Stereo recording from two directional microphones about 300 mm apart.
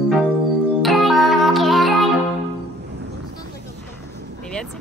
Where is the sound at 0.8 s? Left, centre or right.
Centre.